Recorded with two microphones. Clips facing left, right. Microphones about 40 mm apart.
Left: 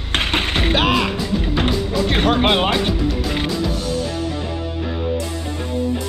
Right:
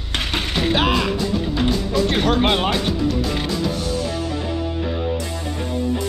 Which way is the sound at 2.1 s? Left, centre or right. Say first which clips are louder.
Left 3 dB; left.